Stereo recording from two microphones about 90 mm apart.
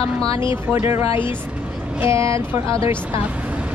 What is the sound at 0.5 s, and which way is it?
Speech, 25° right (ahead or behind).